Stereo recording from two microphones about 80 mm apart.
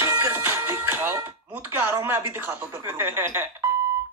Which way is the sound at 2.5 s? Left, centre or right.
Right.